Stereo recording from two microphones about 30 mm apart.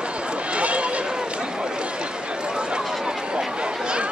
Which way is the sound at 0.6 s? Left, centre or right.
Right.